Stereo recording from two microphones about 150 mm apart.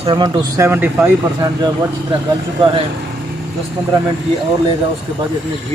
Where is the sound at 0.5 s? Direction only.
15° right (ahead or behind).